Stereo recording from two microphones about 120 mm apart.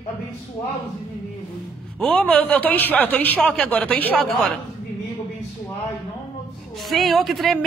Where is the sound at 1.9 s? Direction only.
10° left (ahead or behind).